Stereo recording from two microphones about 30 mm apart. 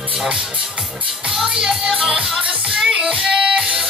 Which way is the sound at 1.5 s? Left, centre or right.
Right.